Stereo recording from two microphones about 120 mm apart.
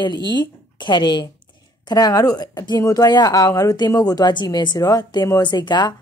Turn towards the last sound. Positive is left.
turn(degrees=35)  # may be behind; listen again after turning